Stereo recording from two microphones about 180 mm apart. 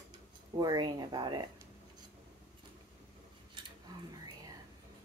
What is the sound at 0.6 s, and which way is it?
Speech, 25° right (ahead or behind).